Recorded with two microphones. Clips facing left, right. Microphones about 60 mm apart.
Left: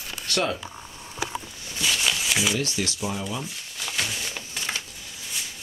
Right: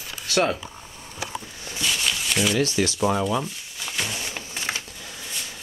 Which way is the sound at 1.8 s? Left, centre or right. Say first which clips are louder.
Left 1 dB; centre.